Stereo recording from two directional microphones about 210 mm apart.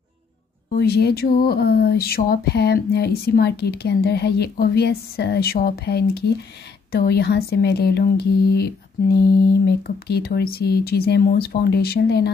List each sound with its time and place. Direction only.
0.7 s speech: 50° left (ahead or behind)